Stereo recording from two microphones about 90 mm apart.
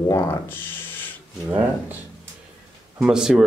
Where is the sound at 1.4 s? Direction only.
20° right (ahead or behind).